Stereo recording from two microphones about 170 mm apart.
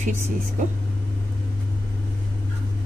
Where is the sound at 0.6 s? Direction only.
50° right (ahead or behind).